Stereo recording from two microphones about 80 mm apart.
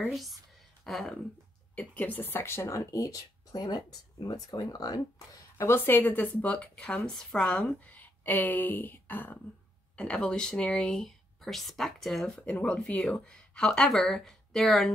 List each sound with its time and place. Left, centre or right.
0.1 s speech: centre
1.8 s speech: left
5.6 s a woman's voice: left; by 12.3 s centre
12.4 s speech: centre